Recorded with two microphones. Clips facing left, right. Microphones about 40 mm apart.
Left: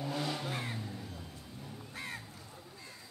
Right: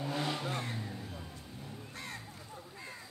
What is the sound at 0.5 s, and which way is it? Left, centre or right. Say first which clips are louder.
Vehicle: right 1 dB; centre.